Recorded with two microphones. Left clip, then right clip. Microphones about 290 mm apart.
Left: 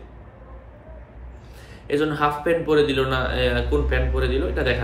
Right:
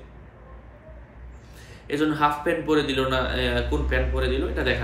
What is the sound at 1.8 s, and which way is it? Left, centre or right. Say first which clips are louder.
A man's voice: left 1 dB; centre.